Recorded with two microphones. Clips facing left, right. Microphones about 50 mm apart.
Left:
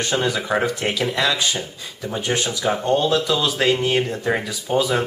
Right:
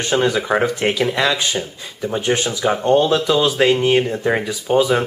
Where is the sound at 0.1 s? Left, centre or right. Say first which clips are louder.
Right 5 dB; centre.